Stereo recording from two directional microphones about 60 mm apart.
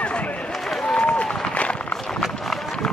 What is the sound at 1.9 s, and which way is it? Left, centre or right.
Run, centre.